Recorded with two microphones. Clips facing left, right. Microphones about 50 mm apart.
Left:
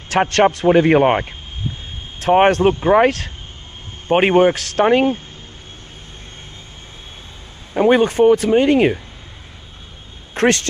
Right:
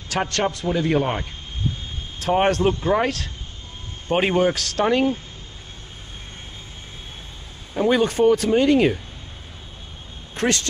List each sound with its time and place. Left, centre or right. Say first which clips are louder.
0.1 s a man's voice: left 8 dB; left
7.7 s speech: left 5 dB; left
10.3 s speech: left 6 dB; left